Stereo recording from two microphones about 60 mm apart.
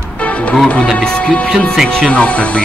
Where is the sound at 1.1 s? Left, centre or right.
Centre.